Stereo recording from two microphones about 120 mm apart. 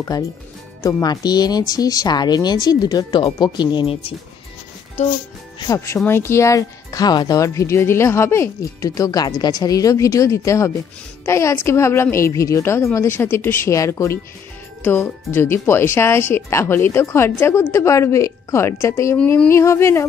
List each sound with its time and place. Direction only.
1.0 s speech: 35° left (ahead or behind)
3.8 s speech: 55° left (ahead or behind)
5.7 s speech: 25° left (ahead or behind)
19.1 s speech: 15° left (ahead or behind)